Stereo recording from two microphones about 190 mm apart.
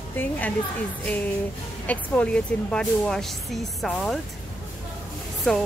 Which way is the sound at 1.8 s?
5° left (ahead or behind).